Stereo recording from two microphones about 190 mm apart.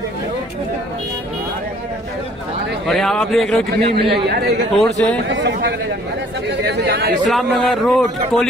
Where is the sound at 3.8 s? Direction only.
60° right (ahead or behind).